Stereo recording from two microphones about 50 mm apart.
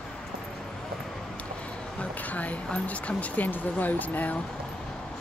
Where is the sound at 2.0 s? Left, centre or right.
Left.